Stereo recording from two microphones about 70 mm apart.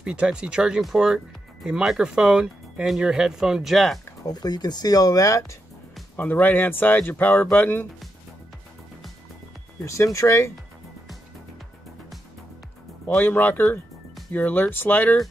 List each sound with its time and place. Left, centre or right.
0.0 s speech: centre
4.3 s speech: left
6.1 s speech: left
9.8 s speech: left
13.2 s speech: left